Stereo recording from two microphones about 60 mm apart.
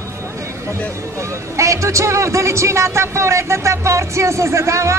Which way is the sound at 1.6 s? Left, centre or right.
Right.